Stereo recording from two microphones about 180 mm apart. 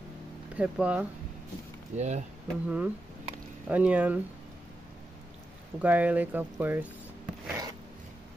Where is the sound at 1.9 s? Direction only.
40° right (ahead or behind).